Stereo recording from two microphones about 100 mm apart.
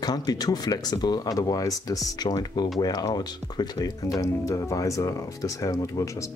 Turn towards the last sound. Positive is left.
turn(degrees=35)  # may be behind; listen again after turning